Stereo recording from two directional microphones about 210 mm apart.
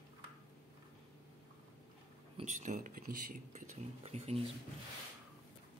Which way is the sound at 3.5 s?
30° right (ahead or behind).